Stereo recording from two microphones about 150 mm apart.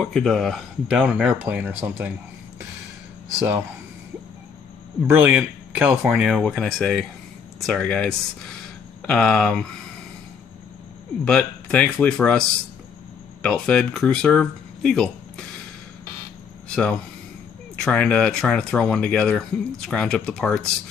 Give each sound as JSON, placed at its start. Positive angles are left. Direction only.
{"t": 0.0, "sound": "speech", "side_deg": 5}
{"t": 3.3, "sound": "speech", "side_deg": -15}
{"t": 5.0, "sound": "speech", "side_deg": -15}
{"t": 6.4, "sound": "speech", "side_deg": 5}
{"t": 11.2, "sound": "speech", "side_deg": 5}
{"t": 16.6, "sound": "speech", "side_deg": 5}